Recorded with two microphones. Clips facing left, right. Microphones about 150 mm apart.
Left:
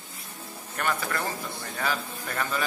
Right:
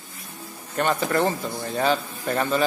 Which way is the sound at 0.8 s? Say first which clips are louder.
Right 8 dB; 25° right (ahead or behind).